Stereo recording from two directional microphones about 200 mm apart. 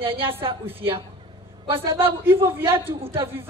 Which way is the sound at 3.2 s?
10° right (ahead or behind).